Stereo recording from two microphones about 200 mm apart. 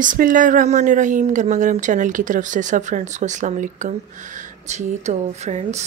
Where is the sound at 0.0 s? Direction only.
40° right (ahead or behind).